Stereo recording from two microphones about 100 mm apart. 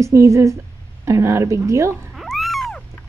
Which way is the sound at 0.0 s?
30° right (ahead or behind).